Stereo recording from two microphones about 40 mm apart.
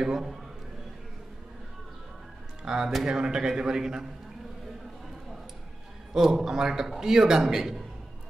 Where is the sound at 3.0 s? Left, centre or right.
Centre.